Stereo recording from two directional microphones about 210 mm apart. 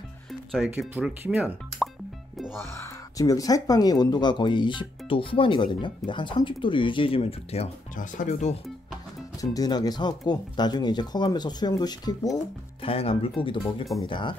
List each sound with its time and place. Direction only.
0.3 s speech: centre (ahead or behind)
2.8 s speech: 15° left (ahead or behind); by 8.5 s 35° left (ahead or behind)
9.4 s speech: 15° left (ahead or behind)